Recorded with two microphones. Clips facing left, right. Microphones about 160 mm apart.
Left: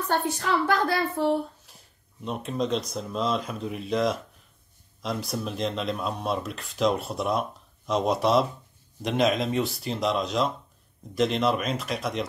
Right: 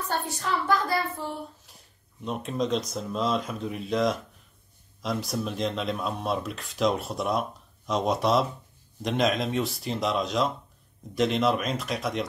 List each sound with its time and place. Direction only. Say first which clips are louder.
0.7 s speech: left 1 dB; 70° left (ahead or behind)
1.7 s a sound: even; centre (ahead or behind)
2.2 s speech: even; centre (ahead or behind)